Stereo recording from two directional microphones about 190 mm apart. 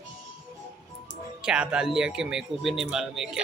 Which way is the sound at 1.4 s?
5° right (ahead or behind).